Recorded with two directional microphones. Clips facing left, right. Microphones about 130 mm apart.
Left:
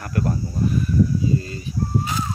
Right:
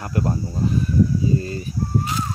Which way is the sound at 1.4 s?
35° right (ahead or behind).